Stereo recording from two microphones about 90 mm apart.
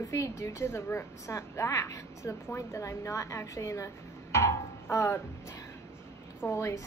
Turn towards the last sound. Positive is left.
turn(degrees=30)  # may be behind; listen again after turning